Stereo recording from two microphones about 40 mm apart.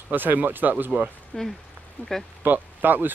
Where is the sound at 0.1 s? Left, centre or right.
Right.